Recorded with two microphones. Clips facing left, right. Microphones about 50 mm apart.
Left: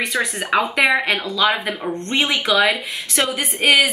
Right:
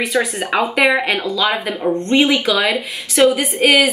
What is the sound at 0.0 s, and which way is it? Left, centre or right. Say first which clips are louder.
A woman's voice: right 3 dB; centre.